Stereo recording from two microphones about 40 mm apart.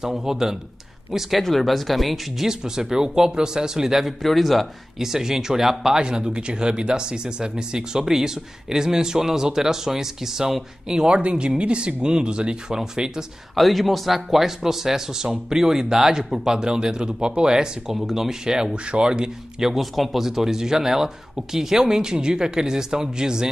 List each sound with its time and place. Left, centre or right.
0.0 s speech: centre
1.4 s speech: centre
2.4 s speech: centre
4.2 s speech: centre
6.0 s speech: right
13.6 s speech: centre
17.9 s speech: centre
18.7 s speech: right
19.6 s speech: centre